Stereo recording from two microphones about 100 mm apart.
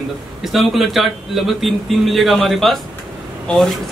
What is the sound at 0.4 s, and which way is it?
A man's voice, centre (ahead or behind).